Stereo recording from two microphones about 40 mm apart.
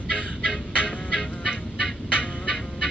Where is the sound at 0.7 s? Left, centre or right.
Left.